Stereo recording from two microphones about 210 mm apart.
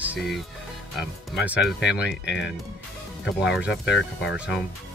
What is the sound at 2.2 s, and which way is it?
Speech, 55° left (ahead or behind).